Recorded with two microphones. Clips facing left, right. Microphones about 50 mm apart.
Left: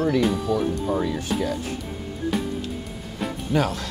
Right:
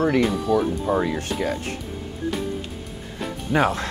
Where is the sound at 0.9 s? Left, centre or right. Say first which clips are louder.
Right 2 dB; right.